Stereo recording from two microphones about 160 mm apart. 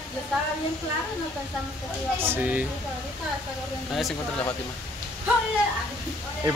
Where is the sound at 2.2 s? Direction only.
10° right (ahead or behind).